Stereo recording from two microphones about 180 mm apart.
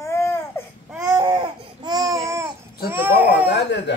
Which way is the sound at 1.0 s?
20° right (ahead or behind).